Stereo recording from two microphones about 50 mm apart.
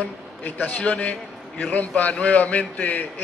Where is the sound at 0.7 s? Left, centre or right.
Left.